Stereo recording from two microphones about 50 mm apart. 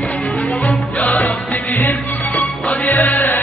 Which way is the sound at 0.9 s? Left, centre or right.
Left.